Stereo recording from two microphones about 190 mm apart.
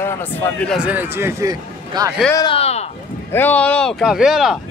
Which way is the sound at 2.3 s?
30° left (ahead or behind).